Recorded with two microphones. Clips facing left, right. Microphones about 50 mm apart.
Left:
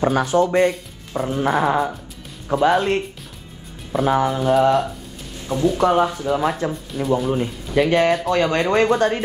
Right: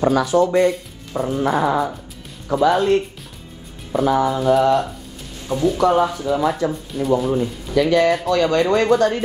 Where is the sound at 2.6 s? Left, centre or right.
Left.